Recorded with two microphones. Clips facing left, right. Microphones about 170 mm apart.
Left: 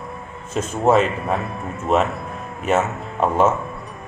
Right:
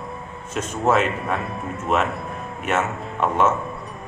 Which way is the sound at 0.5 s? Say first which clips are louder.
Left 3 dB; 30° left (ahead or behind).